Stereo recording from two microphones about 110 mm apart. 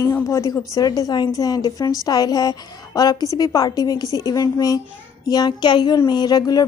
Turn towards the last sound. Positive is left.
turn(degrees=35)  # may be behind; listen again after turning